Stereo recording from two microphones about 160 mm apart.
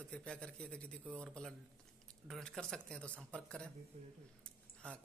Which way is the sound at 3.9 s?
40° right (ahead or behind).